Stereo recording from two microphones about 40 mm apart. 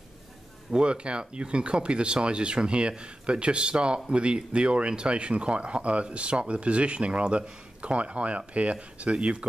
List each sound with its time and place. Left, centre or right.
0.7 s speech: right